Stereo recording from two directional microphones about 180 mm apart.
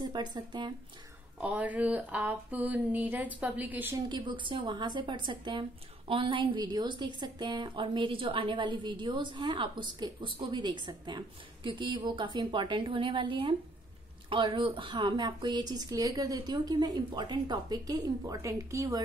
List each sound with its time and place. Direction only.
0.0 s a woman's voice: 25° right (ahead or behind)
1.4 s speech: 10° right (ahead or behind)
4.1 s a woman's voice: 25° right (ahead or behind)